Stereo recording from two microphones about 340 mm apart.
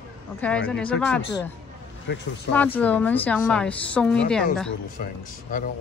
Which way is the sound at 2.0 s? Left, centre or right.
Left.